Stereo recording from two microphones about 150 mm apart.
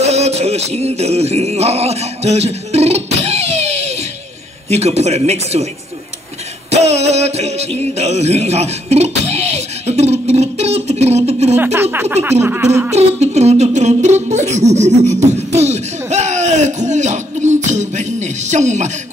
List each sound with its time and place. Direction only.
0.0 s music: 45° right (ahead or behind)
4.6 s speech: 45° right (ahead or behind)
6.7 s music: 45° right (ahead or behind)
11.5 s speech: 15° right (ahead or behind)
12.9 s speech: 45° right (ahead or behind)